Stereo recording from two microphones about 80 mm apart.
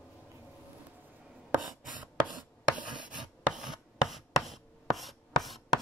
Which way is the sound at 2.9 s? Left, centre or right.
Right.